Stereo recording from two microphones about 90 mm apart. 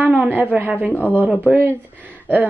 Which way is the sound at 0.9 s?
15° left (ahead or behind).